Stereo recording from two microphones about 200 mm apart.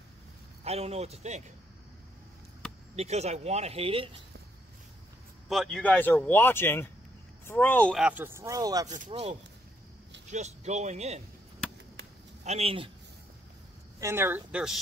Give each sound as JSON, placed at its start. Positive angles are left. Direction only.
{"t": 0.7, "sound": "speech", "side_deg": -30}
{"t": 3.0, "sound": "speech", "side_deg": -35}
{"t": 5.5, "sound": "speech", "side_deg": 0}
{"t": 8.8, "sound": "speech", "side_deg": -40}
{"t": 12.4, "sound": "speech", "side_deg": -30}
{"t": 13.9, "sound": "speech", "side_deg": -15}